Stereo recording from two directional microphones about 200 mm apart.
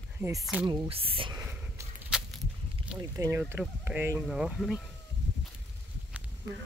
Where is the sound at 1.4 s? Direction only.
10° right (ahead or behind).